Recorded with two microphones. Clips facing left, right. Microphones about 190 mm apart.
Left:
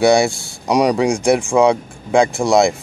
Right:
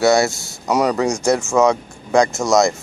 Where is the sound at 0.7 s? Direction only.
15° left (ahead or behind).